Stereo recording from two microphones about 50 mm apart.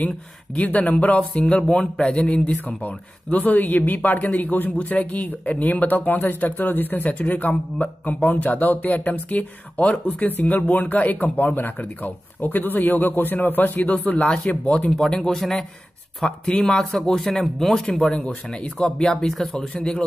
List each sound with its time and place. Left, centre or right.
0.6 s a man's voice: left
14.2 s a man's voice: centre
16.3 s a man's voice: centre